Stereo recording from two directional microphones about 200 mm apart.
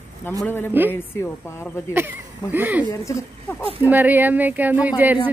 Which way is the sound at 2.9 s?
15° left (ahead or behind).